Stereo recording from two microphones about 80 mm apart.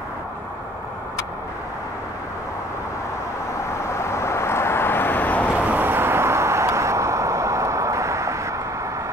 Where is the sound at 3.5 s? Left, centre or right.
Left.